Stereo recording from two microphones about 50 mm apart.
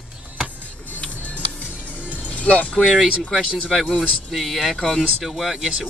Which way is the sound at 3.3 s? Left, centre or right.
Centre.